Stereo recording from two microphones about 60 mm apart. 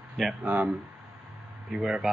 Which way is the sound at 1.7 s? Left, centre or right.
Centre.